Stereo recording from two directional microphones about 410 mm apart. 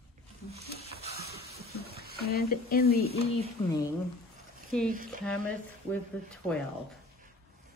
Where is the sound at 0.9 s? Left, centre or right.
Centre.